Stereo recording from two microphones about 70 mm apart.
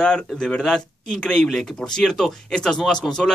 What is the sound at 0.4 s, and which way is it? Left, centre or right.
Speech, centre.